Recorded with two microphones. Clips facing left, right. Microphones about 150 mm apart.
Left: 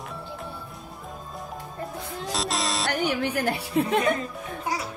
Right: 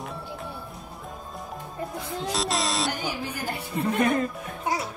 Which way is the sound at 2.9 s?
65° left (ahead or behind).